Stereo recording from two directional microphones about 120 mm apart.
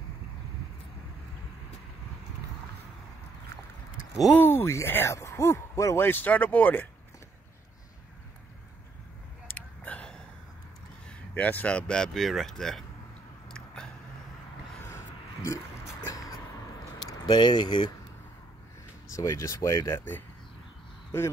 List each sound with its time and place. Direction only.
4.4 s speech: 20° left (ahead or behind)
9.5 s a sound: 10° left (ahead or behind)
11.1 s speech: 15° left (ahead or behind)
14.9 s a sound: 25° left (ahead or behind)
17.1 s speech: 35° left (ahead or behind)
19.1 s speech: 25° left (ahead or behind)